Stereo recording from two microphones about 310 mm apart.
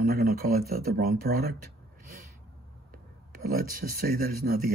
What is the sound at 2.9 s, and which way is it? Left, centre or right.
Speech, right.